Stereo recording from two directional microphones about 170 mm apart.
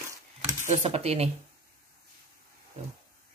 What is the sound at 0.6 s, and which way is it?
Speech, 40° right (ahead or behind).